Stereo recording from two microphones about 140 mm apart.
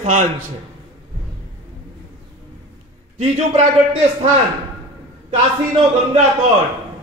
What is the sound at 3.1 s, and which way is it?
Speech, 55° right (ahead or behind).